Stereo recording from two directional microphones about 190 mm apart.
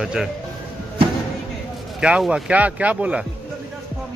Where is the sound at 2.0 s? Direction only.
5° right (ahead or behind).